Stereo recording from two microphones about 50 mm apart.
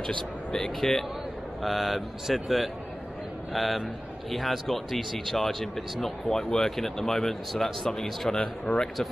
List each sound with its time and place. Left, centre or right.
0.0 s speech: centre
1.6 s speech: centre